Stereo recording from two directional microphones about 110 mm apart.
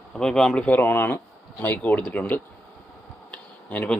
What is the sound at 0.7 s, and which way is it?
Speech, 20° left (ahead or behind).